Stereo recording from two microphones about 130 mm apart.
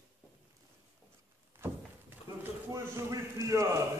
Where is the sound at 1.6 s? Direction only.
15° right (ahead or behind).